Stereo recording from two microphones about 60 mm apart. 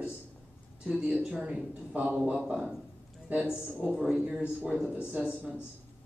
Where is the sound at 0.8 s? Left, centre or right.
Centre.